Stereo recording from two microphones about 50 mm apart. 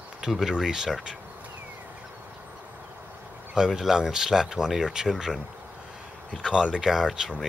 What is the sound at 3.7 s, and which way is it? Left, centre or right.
Speech, centre.